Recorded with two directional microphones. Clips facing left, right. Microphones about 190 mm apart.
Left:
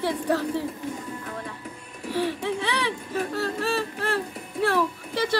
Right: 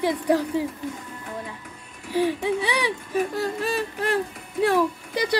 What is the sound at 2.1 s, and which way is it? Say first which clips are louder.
Speech: right 4 dB; 15° right (ahead or behind).